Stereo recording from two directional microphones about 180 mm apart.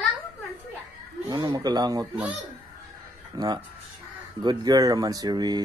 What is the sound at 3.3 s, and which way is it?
Speech, 20° right (ahead or behind).